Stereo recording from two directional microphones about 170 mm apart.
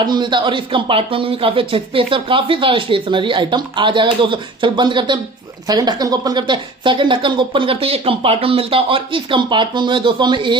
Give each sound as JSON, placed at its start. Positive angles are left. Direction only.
{"t": 0.0, "sound": "speech", "side_deg": -25}